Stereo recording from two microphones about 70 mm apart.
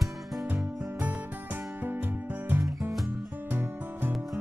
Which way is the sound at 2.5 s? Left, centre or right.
Right.